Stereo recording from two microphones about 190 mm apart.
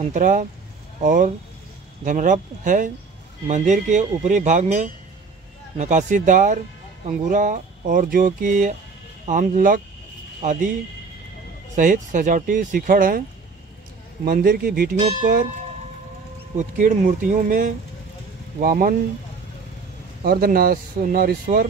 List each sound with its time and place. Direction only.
0.0 s speech: 45° right (ahead or behind)
11.7 s speech: 45° right (ahead or behind)
14.2 s speech: 50° right (ahead or behind)
16.5 s speech: 45° right (ahead or behind)
20.2 s speech: 50° right (ahead or behind)